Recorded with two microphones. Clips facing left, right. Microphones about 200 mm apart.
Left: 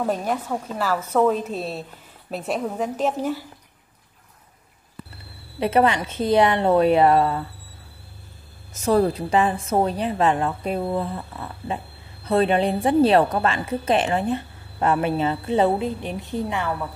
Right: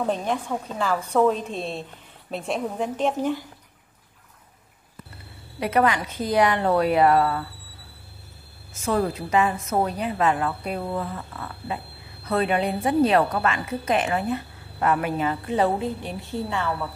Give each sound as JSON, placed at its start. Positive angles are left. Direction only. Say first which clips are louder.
{"t": 0.0, "sound": "a woman's voice", "louder": "left 1 dB", "side_deg": 10}
{"t": 5.6, "sound": "a woman's voice", "louder": "left 2 dB", "side_deg": 25}
{"t": 8.7, "sound": "a woman's voice", "louder": "left 5 dB", "side_deg": 35}
{"t": 11.1, "sound": "a sound", "louder": "left 2 dB", "side_deg": 15}
{"t": 12.3, "sound": "a woman's voice", "louder": "left 4 dB", "side_deg": 30}